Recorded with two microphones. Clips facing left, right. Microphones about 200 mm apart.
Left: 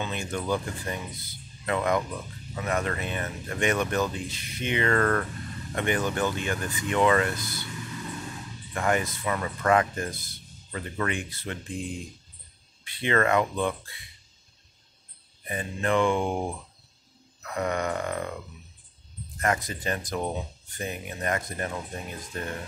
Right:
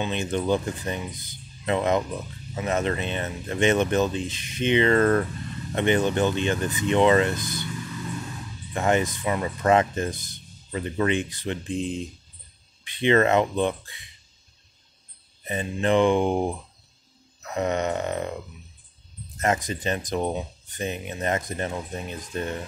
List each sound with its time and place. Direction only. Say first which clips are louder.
0.0 s speech: right 5 dB; 20° right (ahead or behind)
8.7 s speech: right 4 dB; 25° right (ahead or behind)
15.4 s speech: right 4 dB; 20° right (ahead or behind)
17.4 s burping: right 3 dB; 20° right (ahead or behind)
19.3 s speech: right 3 dB; 25° right (ahead or behind)